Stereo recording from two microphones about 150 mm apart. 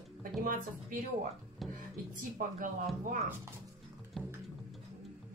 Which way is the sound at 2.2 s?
65° right (ahead or behind).